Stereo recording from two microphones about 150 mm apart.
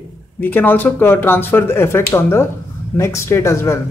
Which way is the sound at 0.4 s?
10° left (ahead or behind).